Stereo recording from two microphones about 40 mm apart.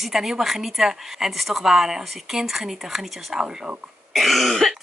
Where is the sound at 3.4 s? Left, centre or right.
Right.